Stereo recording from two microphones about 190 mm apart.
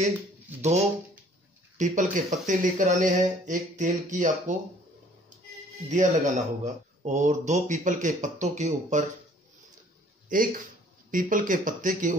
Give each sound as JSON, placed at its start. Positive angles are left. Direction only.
{"t": 1.8, "sound": "speech", "side_deg": -40}
{"t": 5.9, "sound": "speech", "side_deg": -40}
{"t": 10.3, "sound": "speech", "side_deg": -45}